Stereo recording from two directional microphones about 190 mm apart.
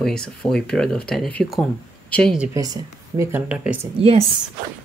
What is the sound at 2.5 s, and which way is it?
Speech, 20° right (ahead or behind).